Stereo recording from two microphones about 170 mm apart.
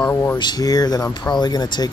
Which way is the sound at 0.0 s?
15° left (ahead or behind).